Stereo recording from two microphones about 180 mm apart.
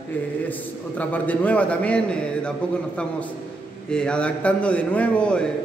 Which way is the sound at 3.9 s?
5° left (ahead or behind).